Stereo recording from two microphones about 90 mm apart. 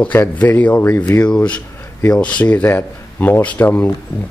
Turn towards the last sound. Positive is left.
turn(degrees=20)  # may be behind; listen again after turning